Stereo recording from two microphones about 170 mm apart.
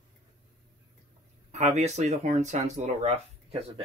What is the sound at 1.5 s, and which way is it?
Speech, 40° right (ahead or behind).